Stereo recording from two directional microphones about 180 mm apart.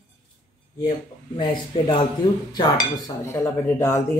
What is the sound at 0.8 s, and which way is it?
Speech, 30° left (ahead or behind).